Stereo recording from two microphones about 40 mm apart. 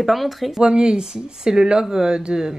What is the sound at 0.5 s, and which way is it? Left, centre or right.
Speech, right.